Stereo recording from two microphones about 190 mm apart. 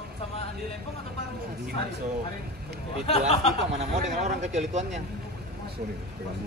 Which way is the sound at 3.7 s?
35° right (ahead or behind).